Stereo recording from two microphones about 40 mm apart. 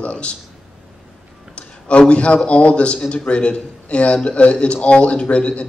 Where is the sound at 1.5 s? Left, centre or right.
Left.